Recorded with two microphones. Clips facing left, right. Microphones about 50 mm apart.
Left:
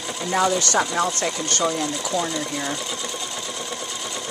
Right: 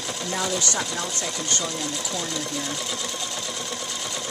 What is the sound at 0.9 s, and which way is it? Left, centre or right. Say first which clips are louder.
Speech: left 7 dB; left.